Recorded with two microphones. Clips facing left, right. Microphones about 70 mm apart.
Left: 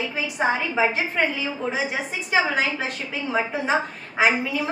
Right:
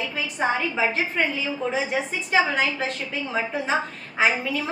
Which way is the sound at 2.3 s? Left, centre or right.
Centre.